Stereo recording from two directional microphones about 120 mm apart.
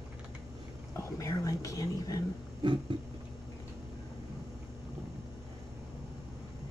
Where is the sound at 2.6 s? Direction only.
45° right (ahead or behind).